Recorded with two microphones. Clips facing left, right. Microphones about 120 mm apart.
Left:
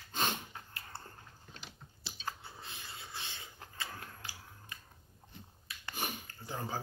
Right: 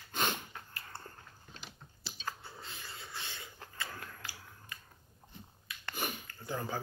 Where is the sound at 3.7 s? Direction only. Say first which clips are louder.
Right 1 dB; 30° left (ahead or behind).